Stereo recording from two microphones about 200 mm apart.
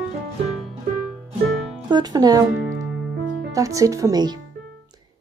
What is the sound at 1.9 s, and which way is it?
Speech, 20° right (ahead or behind).